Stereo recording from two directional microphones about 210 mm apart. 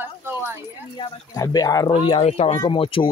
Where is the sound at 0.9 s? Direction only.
20° left (ahead or behind).